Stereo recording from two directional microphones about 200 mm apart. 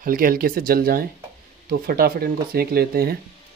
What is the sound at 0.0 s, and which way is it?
Speech, 45° right (ahead or behind).